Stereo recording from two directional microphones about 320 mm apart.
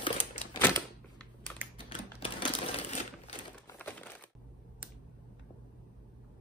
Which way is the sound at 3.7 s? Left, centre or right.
Centre.